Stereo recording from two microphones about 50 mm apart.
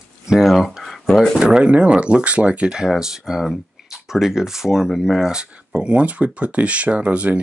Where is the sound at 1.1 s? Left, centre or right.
Centre.